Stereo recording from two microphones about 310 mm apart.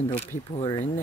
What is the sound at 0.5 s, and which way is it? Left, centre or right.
Speech, left.